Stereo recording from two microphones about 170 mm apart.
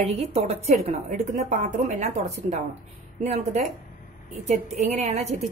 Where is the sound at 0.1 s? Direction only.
40° right (ahead or behind).